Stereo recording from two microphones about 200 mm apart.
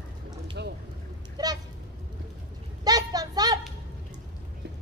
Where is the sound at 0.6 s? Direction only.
60° right (ahead or behind).